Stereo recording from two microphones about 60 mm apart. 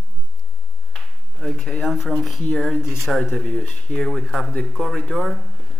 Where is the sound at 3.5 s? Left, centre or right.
Centre.